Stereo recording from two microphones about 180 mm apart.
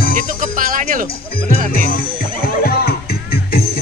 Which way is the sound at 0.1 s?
50° right (ahead or behind).